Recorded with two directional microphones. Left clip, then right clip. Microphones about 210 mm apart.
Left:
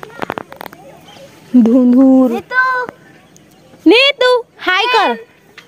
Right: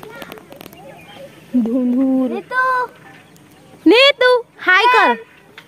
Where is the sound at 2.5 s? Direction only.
5° left (ahead or behind).